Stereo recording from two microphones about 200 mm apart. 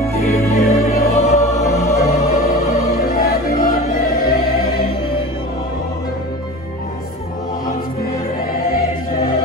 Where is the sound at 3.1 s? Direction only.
45° left (ahead or behind).